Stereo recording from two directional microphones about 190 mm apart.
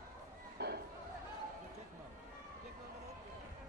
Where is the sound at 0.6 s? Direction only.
60° right (ahead or behind).